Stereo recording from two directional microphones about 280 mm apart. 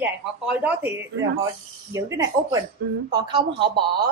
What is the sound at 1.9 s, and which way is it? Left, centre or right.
A woman's voice, centre.